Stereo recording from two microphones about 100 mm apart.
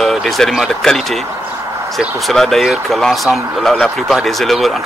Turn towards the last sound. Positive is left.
turn(degrees=0)  # may be behind; listen again after turning